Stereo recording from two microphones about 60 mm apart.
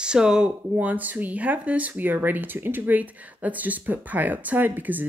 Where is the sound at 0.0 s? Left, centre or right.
Centre.